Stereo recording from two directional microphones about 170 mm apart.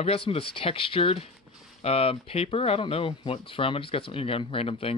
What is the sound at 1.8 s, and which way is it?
Speech, 35° left (ahead or behind).